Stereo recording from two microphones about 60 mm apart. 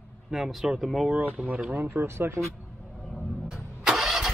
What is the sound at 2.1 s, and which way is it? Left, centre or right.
Speech, right.